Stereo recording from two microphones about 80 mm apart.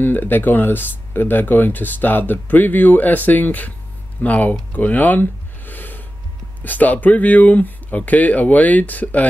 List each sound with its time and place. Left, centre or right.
0.0 s speech: left